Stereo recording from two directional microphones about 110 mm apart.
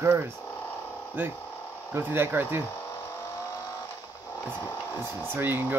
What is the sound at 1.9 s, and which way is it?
Speech, 20° right (ahead or behind).